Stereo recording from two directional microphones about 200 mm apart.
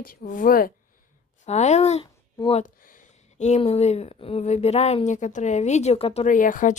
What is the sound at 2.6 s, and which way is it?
Speech, 45° left (ahead or behind).